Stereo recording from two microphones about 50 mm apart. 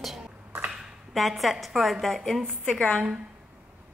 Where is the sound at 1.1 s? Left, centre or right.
Centre.